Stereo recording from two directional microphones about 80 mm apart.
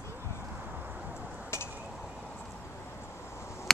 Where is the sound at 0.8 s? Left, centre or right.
Centre.